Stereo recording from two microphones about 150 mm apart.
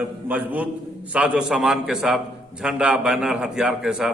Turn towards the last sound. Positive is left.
turn(degrees=-5)  # may be behind; listen again after turning